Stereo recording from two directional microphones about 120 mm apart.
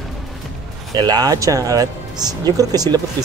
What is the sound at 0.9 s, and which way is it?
Speech, 35° right (ahead or behind).